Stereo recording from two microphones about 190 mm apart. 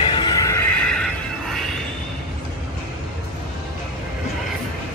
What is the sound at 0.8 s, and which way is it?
Neigh, 5° left (ahead or behind).